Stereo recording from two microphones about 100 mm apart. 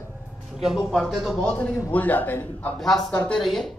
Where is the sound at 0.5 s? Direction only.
5° right (ahead or behind).